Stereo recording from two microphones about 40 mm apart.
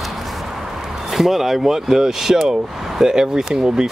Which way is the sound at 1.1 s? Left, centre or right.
Centre.